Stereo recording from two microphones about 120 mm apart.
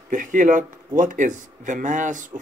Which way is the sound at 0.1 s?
90° right.